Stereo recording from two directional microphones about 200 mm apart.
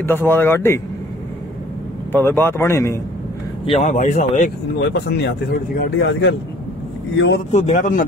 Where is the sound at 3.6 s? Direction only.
35° left (ahead or behind).